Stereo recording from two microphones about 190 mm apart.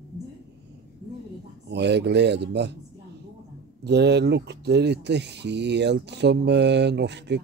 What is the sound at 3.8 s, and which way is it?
Speech, 60° right (ahead or behind).